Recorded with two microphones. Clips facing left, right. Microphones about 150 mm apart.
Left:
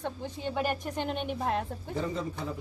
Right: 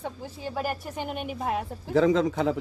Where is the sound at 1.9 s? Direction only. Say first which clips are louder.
Right 12 dB; 90° right.